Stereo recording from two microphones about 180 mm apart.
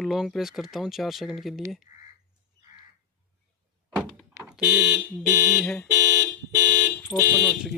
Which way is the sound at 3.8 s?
Centre (ahead or behind).